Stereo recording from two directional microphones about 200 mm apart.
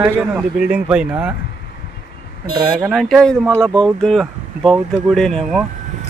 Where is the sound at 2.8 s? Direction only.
Centre (ahead or behind).